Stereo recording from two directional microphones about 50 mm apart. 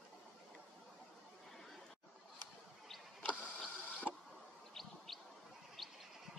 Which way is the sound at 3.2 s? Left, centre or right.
Left.